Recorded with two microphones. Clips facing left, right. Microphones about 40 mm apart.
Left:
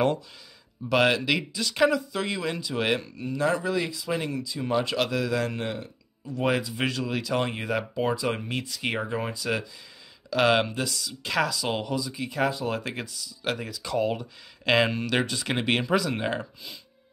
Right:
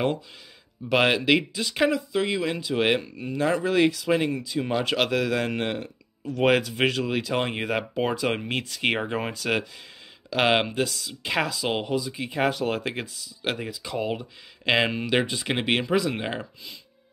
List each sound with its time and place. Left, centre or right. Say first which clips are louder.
0.8 s speech: right 2 dB; right
2.0 s speech: right 4 dB; centre
2.7 s speech: right 4 dB; right
6.3 s speech: right 4 dB; right
8.2 s speech: right 2 dB; right
10.3 s speech: even; right
12.4 s speech: right 3 dB; right; by 16.7 s centre